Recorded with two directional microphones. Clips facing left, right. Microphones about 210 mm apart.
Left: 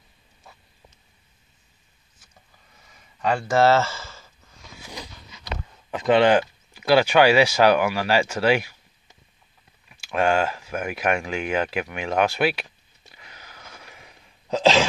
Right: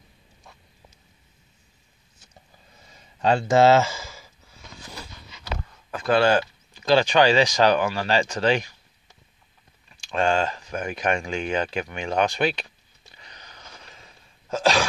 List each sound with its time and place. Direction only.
2.9 s a sound: 25° right (ahead or behind); by 4.6 s 10° right (ahead or behind)
5.9 s speech: 20° left (ahead or behind)
13.1 s sneeze: 5° left (ahead or behind)